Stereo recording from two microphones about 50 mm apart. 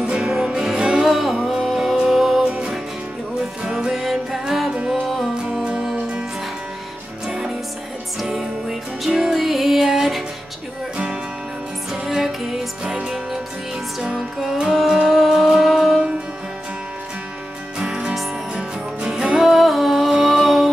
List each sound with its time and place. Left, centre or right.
0.0 s music: centre
2.4 s music: centre
3.9 s music: centre
7.2 s music: centre
11.9 s music: centre
14.0 s music: centre
17.7 s music: centre
19.4 s music: centre